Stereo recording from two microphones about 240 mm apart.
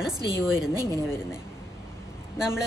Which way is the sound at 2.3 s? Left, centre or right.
Centre.